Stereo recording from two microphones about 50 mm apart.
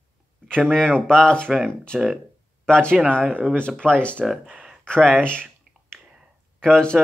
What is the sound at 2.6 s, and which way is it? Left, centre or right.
Speech, centre.